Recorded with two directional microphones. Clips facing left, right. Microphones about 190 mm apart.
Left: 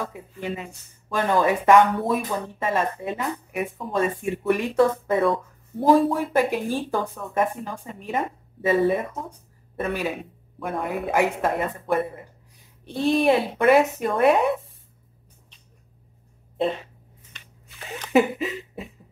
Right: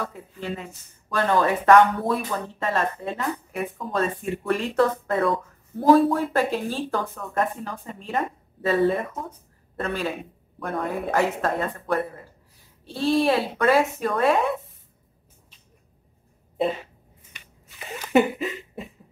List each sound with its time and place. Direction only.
0.0 s speech: 15° left (ahead or behind)
8.6 s speech: 15° left (ahead or behind)
12.8 s speech: 20° left (ahead or behind)
17.3 s a sound: 10° right (ahead or behind)